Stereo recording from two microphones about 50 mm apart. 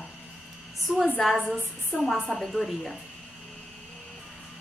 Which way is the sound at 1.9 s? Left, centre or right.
Centre.